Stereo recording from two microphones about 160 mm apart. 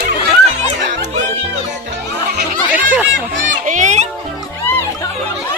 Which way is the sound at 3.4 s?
50° right (ahead or behind).